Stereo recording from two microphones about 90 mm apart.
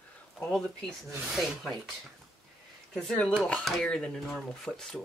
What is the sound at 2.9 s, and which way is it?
Speech, 5° left (ahead or behind).